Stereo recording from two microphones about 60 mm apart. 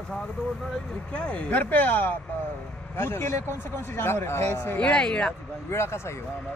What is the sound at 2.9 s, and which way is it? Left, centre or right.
Speech, left.